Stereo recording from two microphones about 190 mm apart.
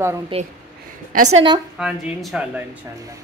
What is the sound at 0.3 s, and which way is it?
A woman's voice, 30° right (ahead or behind).